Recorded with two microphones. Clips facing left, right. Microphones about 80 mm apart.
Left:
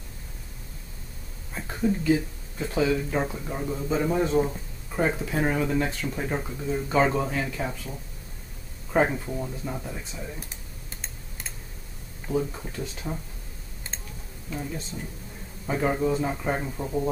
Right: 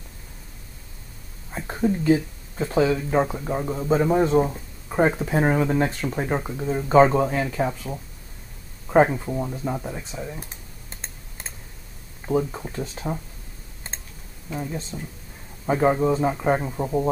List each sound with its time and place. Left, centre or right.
1.5 s a sound: right
2.0 s speech: right
4.4 s a sound: right
5.2 s speech: right
9.0 s speech: centre
10.5 s computer keyboard: right
12.3 s speech: right
14.5 s speech: centre
15.6 s speech: right